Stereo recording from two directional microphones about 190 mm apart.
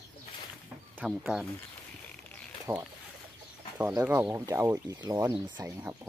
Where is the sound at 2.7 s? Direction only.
15° right (ahead or behind).